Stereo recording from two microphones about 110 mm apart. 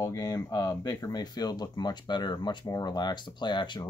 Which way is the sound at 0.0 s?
35° left (ahead or behind).